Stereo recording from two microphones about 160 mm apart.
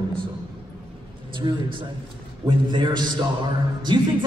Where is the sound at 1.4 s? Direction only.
30° right (ahead or behind).